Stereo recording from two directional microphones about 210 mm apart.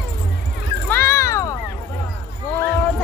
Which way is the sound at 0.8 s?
10° left (ahead or behind).